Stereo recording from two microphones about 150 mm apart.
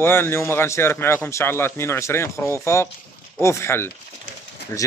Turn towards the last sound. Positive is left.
turn(degrees=20)  # may be behind; listen again after turning